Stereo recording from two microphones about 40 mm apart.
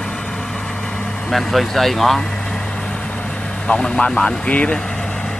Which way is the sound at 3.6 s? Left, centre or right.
Left.